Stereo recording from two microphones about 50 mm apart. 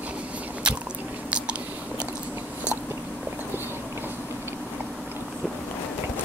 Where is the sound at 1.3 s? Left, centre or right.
Right.